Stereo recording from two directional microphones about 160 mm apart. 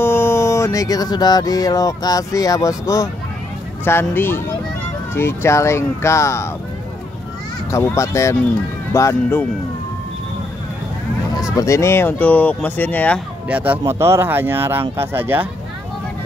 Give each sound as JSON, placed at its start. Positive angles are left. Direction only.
{"t": 0.0, "sound": "mantra", "side_deg": 15}
{"t": 3.8, "sound": "speech", "side_deg": 15}
{"t": 7.7, "sound": "speech", "side_deg": 20}
{"t": 11.5, "sound": "speech", "side_deg": 20}
{"t": 13.5, "sound": "speech", "side_deg": -10}